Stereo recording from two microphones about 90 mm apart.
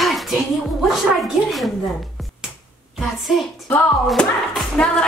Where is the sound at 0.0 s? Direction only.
Centre (ahead or behind).